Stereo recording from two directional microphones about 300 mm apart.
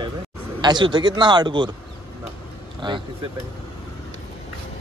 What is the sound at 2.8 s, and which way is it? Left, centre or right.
Speech, centre.